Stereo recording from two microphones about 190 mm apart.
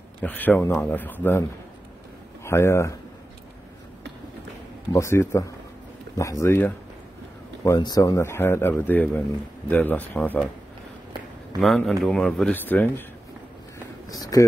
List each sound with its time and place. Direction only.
0.2 s speech: 10° left (ahead or behind)
2.4 s speech: 15° left (ahead or behind)
4.9 s speech: 15° left (ahead or behind)
11.6 s speech: centre (ahead or behind)
14.0 s a sound: 20° left (ahead or behind)